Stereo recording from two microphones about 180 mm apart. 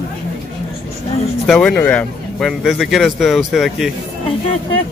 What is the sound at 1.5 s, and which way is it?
A man's voice, 5° left (ahead or behind).